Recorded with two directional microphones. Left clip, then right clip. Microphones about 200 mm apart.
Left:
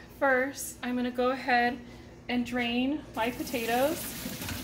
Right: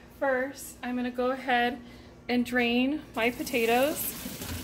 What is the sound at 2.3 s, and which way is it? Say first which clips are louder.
Speech: right 4 dB; 50° right (ahead or behind).